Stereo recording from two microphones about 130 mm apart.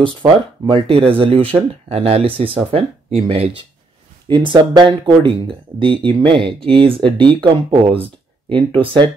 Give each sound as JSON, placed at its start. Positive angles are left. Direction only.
{"t": 0.0, "sound": "speech", "side_deg": -40}